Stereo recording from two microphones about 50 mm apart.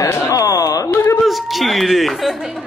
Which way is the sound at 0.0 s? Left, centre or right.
Left.